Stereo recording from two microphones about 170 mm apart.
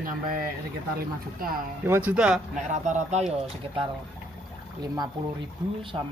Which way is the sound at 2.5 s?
45° right (ahead or behind).